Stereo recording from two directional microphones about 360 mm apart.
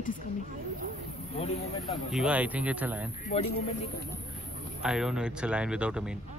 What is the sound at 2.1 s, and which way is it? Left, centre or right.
Speech, centre.